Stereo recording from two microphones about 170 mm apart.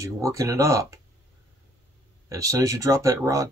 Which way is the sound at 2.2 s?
20° right (ahead or behind).